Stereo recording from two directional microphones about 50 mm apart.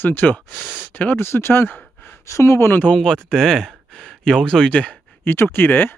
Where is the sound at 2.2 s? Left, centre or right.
Left.